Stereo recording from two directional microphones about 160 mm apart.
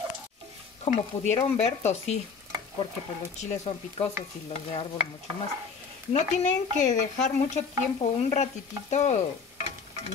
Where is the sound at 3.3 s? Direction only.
45° left (ahead or behind).